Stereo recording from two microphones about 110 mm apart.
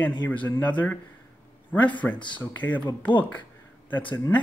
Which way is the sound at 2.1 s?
45° left (ahead or behind).